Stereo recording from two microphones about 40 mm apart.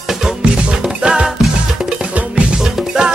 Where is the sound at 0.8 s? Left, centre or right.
Centre.